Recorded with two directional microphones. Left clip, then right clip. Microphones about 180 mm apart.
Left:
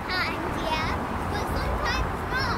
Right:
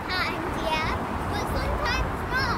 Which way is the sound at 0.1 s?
25° right (ahead or behind).